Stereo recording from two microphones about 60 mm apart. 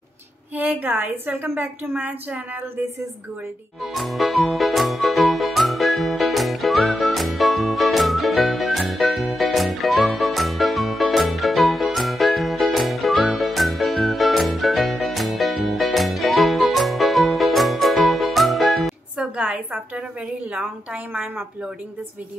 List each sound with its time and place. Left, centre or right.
0.6 s a woman's voice: right
3.8 s music: centre
19.1 s a sound: centre